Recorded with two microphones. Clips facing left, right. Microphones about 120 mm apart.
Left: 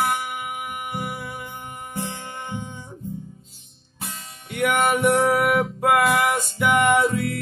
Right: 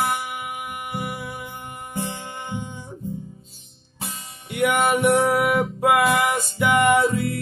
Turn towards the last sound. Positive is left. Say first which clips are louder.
# right 1 dB
turn(degrees=0)  # may be behind; listen again after turning